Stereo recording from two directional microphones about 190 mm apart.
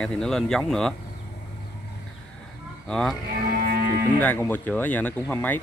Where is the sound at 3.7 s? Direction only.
55° right (ahead or behind).